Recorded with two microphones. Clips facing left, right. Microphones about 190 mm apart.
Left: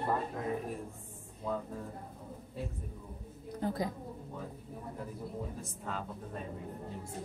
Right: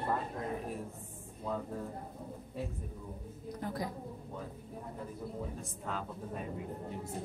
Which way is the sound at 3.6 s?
20° left (ahead or behind).